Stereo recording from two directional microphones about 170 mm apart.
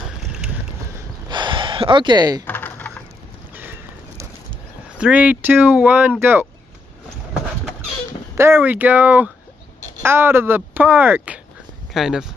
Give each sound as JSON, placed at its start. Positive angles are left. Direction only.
{"t": 1.3, "sound": "gasp", "side_deg": -30}
{"t": 2.4, "sound": "typing", "side_deg": 10}
{"t": 3.5, "sound": "a sound", "side_deg": -10}
{"t": 4.9, "sound": "speech", "side_deg": -5}
{"t": 8.4, "sound": "speech", "side_deg": -15}